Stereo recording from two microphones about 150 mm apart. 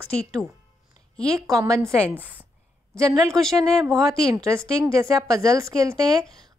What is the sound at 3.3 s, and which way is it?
Speech, 5° left (ahead or behind).